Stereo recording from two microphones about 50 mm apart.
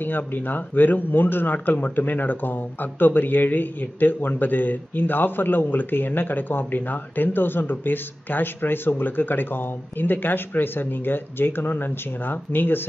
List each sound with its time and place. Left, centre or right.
0.0 s speech: left